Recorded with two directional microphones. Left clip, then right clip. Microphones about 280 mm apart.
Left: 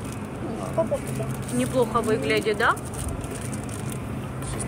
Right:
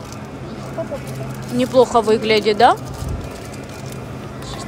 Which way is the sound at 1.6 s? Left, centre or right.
Centre.